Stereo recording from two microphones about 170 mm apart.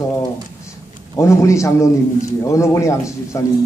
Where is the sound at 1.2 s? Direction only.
15° left (ahead or behind).